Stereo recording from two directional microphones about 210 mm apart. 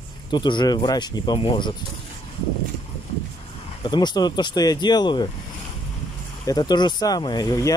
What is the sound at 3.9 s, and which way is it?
Speech, 20° left (ahead or behind).